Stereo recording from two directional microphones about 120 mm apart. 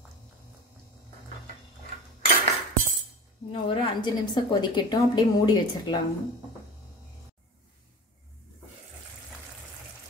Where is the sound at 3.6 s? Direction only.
45° left (ahead or behind).